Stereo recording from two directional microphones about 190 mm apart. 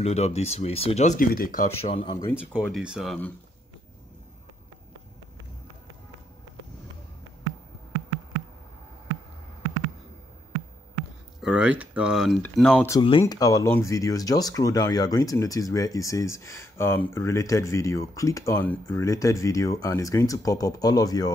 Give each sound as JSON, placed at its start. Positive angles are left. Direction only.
{"t": 0.0, "sound": "speech", "side_deg": 35}
{"t": 1.8, "sound": "speech", "side_deg": 30}
{"t": 2.5, "sound": "speech", "side_deg": 0}
{"t": 11.4, "sound": "speech", "side_deg": -5}
{"t": 12.9, "sound": "speech", "side_deg": 25}